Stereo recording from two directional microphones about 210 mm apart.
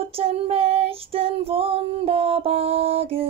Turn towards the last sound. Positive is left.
turn(degrees=-30)  # may be behind; listen again after turning